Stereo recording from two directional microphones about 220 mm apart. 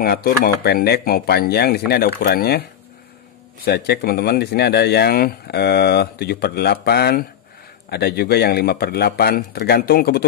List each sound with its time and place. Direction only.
0.0 s speech: 45° left (ahead or behind)
3.6 s speech: 45° left (ahead or behind)